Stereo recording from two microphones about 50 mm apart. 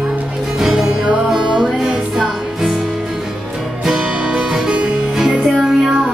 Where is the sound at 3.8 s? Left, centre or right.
Centre.